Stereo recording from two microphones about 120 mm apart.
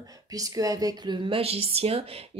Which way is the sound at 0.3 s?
30° right (ahead or behind).